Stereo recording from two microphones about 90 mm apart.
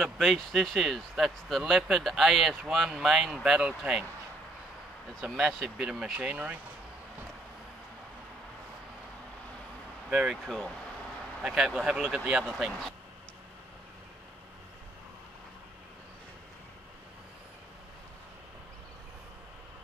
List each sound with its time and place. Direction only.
0.0 s speech: centre (ahead or behind)
5.4 s speech: 5° right (ahead or behind)
10.0 s speech: 10° right (ahead or behind)
10.4 s speech: centre (ahead or behind)